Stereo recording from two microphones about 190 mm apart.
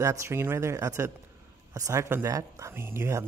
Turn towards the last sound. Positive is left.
turn(degrees=-15)  # may be behind; listen again after turning